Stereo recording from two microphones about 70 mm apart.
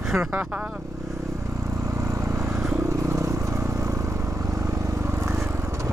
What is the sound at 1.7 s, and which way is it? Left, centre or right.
Vehicle, right.